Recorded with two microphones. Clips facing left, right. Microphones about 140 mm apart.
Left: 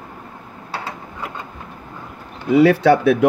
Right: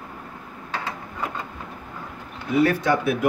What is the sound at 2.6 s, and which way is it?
Speech, 75° left (ahead or behind).